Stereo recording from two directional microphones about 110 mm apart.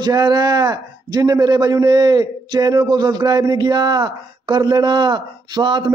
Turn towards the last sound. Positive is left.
turn(degrees=-45)  # may be behind; listen again after turning